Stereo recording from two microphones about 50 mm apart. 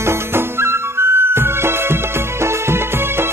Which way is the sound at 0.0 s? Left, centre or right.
Right.